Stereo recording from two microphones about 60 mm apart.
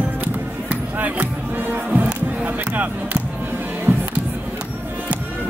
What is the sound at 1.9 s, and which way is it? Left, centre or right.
Music, right.